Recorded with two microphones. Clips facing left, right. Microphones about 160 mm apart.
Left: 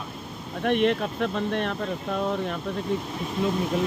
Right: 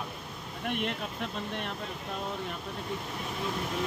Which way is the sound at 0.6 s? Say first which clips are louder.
Left 11 dB; 85° left.